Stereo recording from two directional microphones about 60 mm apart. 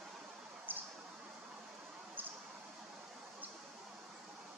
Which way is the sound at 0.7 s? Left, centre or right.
Right.